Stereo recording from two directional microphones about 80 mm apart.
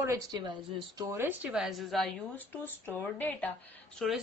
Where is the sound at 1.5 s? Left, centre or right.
Centre.